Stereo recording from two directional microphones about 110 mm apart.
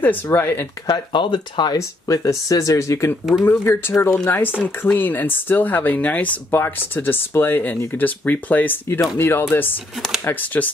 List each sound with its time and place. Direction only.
0.0 s speech: 20° left (ahead or behind)
0.8 s speech: 40° left (ahead or behind)
1.8 s speech: 30° left (ahead or behind)